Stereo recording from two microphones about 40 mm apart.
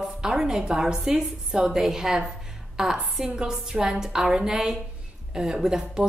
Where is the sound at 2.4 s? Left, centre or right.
Centre.